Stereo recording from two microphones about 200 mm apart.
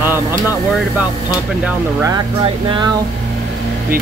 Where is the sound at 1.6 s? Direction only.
15° right (ahead or behind).